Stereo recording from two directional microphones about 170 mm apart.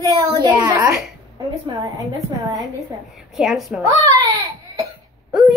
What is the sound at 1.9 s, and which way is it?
Speech, 20° right (ahead or behind).